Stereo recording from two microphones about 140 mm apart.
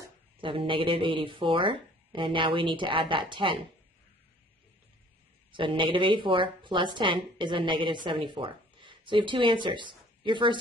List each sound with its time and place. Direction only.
0.4 s a woman's voice: 40° right (ahead or behind)
5.5 s a woman's voice: 35° right (ahead or behind)